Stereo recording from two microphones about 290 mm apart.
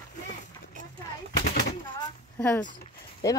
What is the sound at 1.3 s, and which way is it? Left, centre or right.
Gunshot, left.